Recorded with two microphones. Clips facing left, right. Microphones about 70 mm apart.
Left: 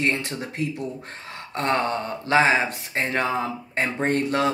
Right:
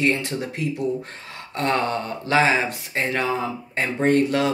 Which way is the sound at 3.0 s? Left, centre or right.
Left.